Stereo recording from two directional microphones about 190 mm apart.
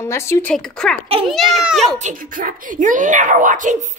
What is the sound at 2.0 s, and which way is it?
A child's voice, 45° right (ahead or behind).